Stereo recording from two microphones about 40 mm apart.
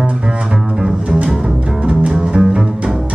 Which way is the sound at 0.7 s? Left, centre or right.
Right.